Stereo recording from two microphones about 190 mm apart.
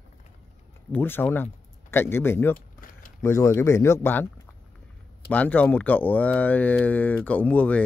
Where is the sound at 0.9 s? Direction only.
10° left (ahead or behind).